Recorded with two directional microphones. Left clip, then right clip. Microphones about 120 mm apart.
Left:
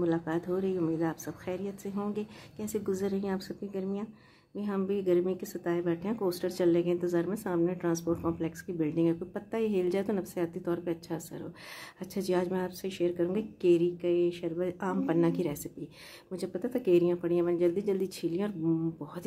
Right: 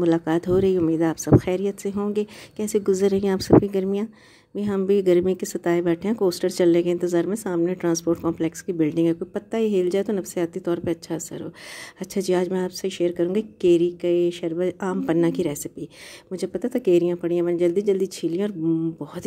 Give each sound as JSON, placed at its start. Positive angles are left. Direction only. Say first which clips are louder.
{"t": 0.0, "sound": "a woman's voice", "louder": "right 10 dB", "side_deg": -60}
{"t": 4.6, "sound": "a woman's voice", "louder": "right 11 dB", "side_deg": -55}
{"t": 6.1, "sound": "speech", "louder": "right 10 dB", "side_deg": -50}
{"t": 8.4, "sound": "speech", "louder": "right 10 dB", "side_deg": -55}